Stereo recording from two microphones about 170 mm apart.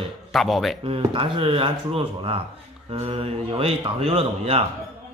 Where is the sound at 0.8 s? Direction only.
30° right (ahead or behind).